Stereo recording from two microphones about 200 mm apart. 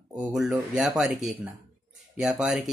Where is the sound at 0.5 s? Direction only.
Centre (ahead or behind).